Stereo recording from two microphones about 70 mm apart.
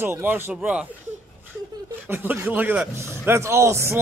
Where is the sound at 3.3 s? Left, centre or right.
Right.